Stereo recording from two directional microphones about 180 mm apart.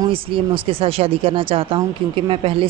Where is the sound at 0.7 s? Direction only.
30° right (ahead or behind).